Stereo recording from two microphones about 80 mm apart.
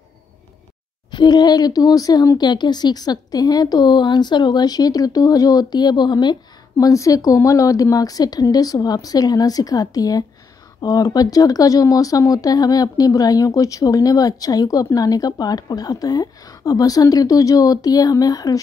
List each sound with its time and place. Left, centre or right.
1.1 s speech: left
6.8 s speech: left